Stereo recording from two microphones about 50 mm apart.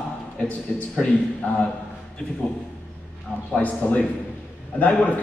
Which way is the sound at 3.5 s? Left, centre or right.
Left.